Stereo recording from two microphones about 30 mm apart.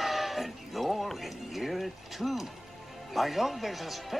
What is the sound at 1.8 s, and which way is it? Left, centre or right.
Speech, centre.